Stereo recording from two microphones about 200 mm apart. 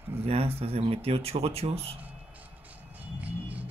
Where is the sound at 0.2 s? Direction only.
30° right (ahead or behind).